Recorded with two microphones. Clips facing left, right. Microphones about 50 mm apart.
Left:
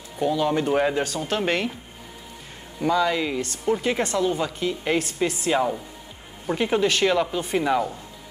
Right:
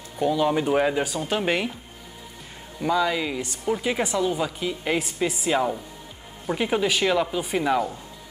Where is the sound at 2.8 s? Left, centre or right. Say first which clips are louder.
Left 1 dB; centre.